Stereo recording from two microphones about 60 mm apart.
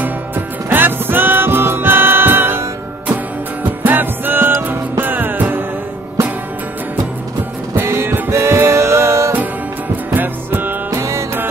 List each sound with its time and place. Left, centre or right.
0.7 s music: right
3.8 s music: right
7.7 s music: right
10.1 s music: right
11.0 s music: right